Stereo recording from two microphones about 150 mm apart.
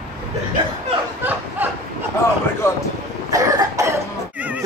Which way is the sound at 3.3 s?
20° right (ahead or behind).